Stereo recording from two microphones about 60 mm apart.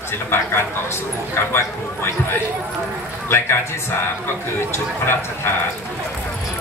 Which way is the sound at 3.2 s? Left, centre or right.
Left.